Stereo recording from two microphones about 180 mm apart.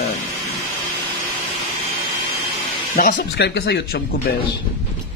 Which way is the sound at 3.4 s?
70° left (ahead or behind).